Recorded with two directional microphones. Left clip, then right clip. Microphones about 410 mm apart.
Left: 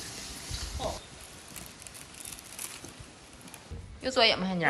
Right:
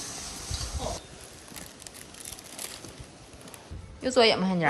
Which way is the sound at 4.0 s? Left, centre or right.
Centre.